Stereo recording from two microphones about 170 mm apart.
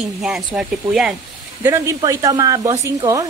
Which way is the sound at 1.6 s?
15° right (ahead or behind).